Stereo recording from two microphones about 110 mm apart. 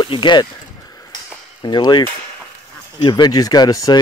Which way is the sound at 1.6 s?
45° left (ahead or behind).